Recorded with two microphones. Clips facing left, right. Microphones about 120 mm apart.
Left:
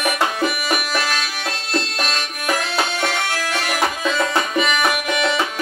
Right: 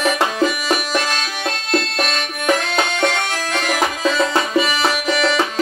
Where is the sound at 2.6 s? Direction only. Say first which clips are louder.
Right 3 dB; 10° left (ahead or behind).